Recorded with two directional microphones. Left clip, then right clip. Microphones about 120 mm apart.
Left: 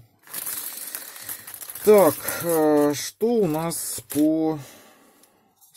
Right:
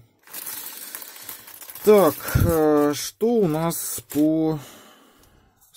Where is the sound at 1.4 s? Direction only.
15° right (ahead or behind).